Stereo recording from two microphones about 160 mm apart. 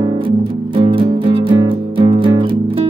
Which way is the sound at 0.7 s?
35° right (ahead or behind).